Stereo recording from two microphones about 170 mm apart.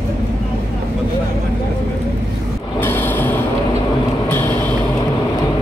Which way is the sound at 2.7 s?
10° left (ahead or behind).